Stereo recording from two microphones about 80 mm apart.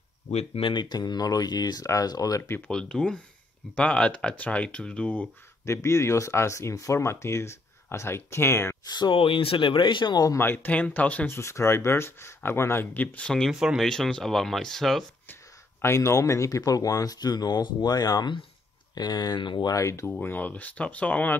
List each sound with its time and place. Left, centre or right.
0.7 s speech: left
2.7 s speech: centre
5.7 s speech: left
8.8 s speech: left
10.4 s speech: left
11.3 s speech: left
13.2 s speech: centre
13.5 s speech: centre
13.8 s speech: centre
15.8 s speech: left
19.7 s speech: left
20.1 s speech: left